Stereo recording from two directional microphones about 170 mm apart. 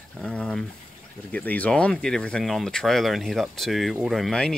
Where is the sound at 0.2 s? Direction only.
5° left (ahead or behind).